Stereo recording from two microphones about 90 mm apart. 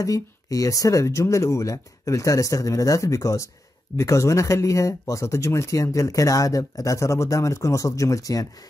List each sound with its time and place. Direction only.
0.0 s speech: 40° left (ahead or behind)